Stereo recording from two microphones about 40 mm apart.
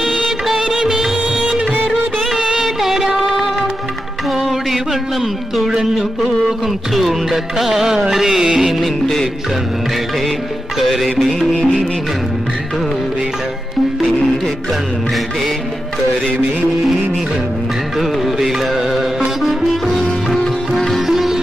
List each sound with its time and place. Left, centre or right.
0.7 s music: centre
2.3 s music of bollywood: centre
4.3 s music: centre
5.7 s speech: centre
6.9 s music: centre
10.8 s music: centre
17.9 s music: centre
19.9 s sitar: centre
21.1 s sitar: centre